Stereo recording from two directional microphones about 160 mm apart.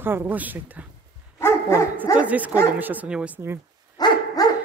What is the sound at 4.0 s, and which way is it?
Dog, 25° left (ahead or behind).